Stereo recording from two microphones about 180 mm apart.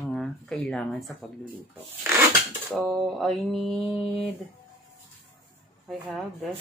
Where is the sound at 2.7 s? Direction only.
Centre (ahead or behind).